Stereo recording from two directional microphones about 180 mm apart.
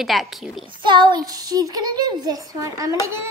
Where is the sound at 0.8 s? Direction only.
25° right (ahead or behind).